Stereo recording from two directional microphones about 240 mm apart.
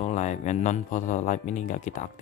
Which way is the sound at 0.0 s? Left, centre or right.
Left.